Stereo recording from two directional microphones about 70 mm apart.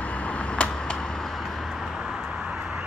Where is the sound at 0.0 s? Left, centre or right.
Centre.